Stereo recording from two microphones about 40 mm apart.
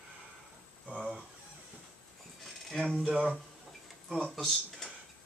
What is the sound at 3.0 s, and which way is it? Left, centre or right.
Speech, centre.